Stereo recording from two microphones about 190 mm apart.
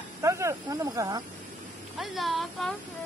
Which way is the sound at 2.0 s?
Centre (ahead or behind).